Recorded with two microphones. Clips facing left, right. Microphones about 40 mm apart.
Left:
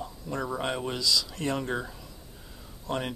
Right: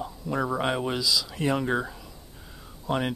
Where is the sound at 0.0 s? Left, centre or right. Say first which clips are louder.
Right 5 dB; centre.